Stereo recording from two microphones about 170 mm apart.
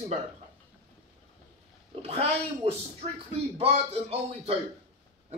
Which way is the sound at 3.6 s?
35° right (ahead or behind).